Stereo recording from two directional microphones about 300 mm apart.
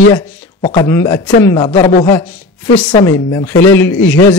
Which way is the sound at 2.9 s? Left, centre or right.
Centre.